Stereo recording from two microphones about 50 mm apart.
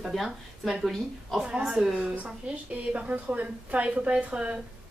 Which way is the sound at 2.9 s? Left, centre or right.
Right.